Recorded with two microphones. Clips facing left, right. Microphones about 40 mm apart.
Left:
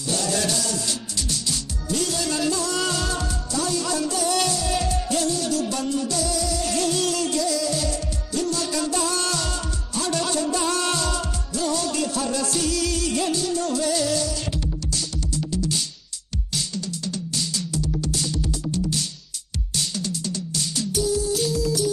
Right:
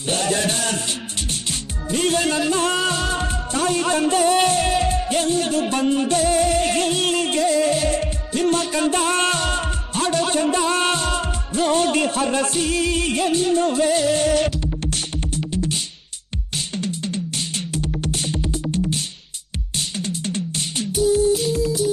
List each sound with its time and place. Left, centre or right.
0.1 s music: right
20.0 s music: right